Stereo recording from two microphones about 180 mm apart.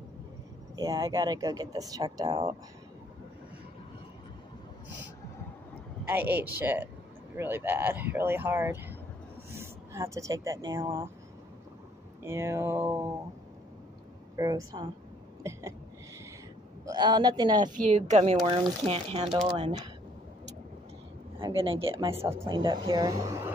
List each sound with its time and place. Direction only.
0.7 s speech: 20° right (ahead or behind)
6.0 s speech: 10° right (ahead or behind)
12.2 s speech: 15° right (ahead or behind)
14.3 s speech: 20° right (ahead or behind)
15.4 s a sound: 15° right (ahead or behind)
16.9 s speech: 25° right (ahead or behind)
17.8 s speech: 40° right (ahead or behind)
21.4 s speech: 30° right (ahead or behind)